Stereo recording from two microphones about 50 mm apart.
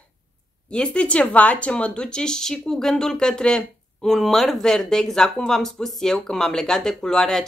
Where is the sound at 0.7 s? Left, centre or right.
Left.